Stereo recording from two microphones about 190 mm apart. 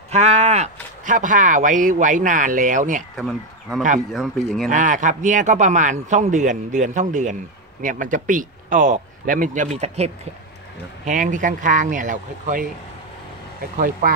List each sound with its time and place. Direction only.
0.1 s speech: 35° right (ahead or behind)
3.2 s speech: centre (ahead or behind)
4.6 s a man's voice: 40° right (ahead or behind)